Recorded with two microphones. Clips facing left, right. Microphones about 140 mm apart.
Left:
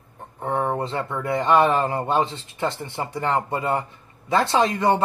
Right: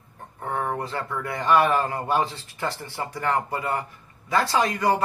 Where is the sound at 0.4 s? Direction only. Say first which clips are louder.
Left 4 dB; 20° left (ahead or behind).